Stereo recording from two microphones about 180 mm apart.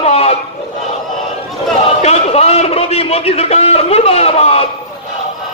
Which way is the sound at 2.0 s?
35° left (ahead or behind).